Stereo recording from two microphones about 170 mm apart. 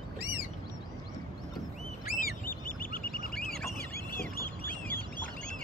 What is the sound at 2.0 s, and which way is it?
Duck, 55° left (ahead or behind).